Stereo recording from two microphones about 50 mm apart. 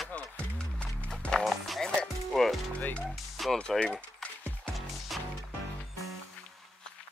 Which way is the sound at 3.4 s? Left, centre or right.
Centre.